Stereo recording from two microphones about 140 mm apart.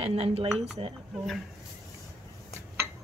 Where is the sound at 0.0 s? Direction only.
45° right (ahead or behind).